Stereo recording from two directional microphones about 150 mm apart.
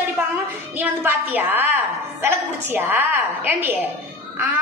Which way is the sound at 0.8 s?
10° right (ahead or behind).